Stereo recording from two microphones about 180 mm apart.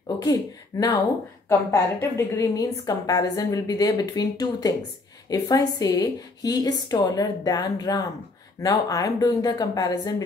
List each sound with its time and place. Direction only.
0.2 s a woman's voice: 20° left (ahead or behind)